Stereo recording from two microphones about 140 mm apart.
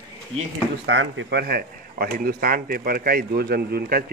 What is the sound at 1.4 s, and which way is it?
Speech, 90° right.